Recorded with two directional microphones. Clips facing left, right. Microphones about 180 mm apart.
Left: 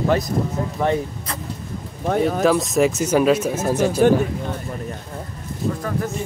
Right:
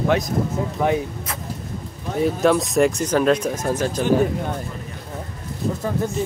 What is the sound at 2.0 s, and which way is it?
Speech, 65° left (ahead or behind).